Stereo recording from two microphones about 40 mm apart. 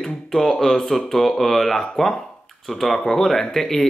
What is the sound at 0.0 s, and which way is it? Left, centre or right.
Speech, centre.